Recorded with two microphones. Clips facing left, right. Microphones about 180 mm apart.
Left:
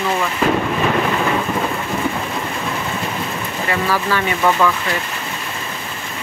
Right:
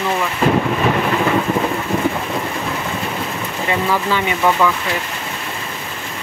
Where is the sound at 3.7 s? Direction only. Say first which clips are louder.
Right 1 dB; 20° right (ahead or behind).